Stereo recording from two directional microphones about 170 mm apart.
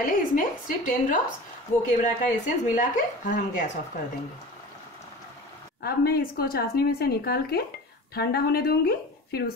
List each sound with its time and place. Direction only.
0.0 s speech: 55° left (ahead or behind)
5.8 s a woman's voice: 65° left (ahead or behind)